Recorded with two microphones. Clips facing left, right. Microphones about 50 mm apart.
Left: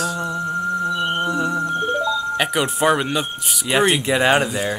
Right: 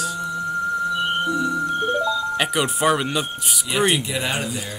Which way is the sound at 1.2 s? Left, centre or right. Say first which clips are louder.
Left 1 dB; left.